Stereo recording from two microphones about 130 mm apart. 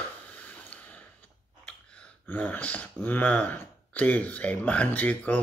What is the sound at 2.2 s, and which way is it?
Speech, 10° left (ahead or behind).